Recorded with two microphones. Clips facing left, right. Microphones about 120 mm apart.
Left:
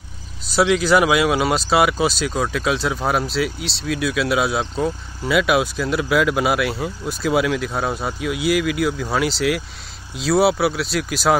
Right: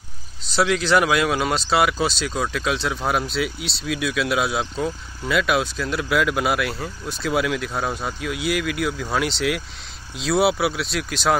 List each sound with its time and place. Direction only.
0.6 s speech: 5° left (ahead or behind)